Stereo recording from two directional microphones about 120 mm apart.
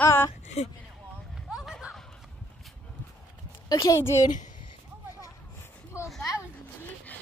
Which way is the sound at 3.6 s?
25° left (ahead or behind).